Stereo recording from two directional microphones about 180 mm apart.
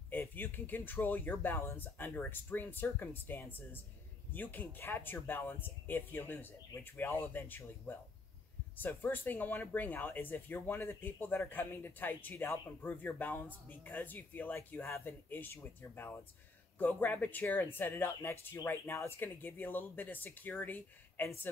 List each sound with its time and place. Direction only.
0.1 s speech: 10° left (ahead or behind)